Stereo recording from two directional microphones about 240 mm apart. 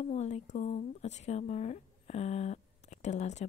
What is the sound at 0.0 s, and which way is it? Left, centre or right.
A woman's voice, left.